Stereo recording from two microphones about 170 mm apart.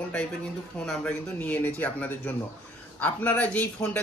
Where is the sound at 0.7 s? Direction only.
5° left (ahead or behind).